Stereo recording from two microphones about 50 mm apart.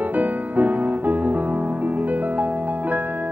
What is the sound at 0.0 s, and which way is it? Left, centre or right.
Music, right.